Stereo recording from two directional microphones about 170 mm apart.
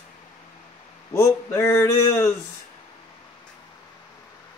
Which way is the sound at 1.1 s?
15° left (ahead or behind).